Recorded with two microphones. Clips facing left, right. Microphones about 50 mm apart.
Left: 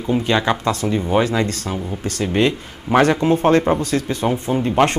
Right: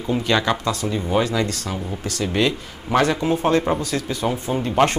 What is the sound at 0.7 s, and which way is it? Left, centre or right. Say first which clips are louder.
Speech: left 4 dB; left.